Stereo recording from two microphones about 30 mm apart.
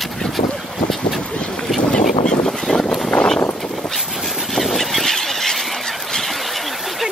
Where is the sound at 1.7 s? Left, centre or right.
Left.